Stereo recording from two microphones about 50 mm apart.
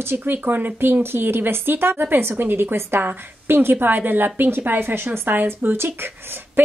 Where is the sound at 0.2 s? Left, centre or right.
Right.